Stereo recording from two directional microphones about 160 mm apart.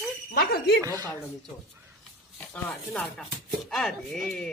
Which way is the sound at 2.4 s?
5° left (ahead or behind).